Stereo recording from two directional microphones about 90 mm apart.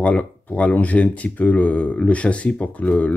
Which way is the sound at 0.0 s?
15° left (ahead or behind).